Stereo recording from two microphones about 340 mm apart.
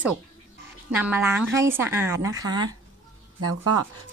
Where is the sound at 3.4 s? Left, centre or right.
Right.